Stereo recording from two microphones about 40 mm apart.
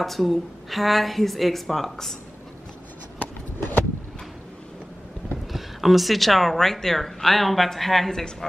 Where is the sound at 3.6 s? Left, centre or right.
Left.